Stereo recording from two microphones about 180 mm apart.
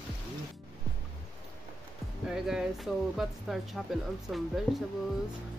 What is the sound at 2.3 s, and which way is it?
Speech, 5° right (ahead or behind).